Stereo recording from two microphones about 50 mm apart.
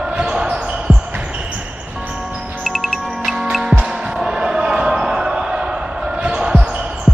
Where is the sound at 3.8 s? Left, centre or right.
Centre.